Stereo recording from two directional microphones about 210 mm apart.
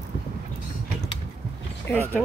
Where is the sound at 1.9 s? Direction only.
10° left (ahead or behind).